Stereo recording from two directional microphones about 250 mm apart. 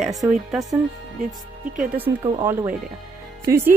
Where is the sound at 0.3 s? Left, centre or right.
Centre.